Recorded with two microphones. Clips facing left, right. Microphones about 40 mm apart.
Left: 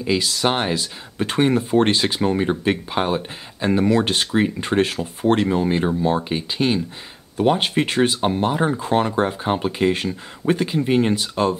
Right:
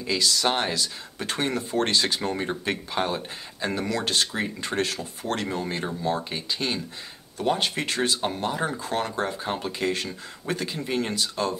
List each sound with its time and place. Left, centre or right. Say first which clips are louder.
0.0 s speech: left 4 dB; left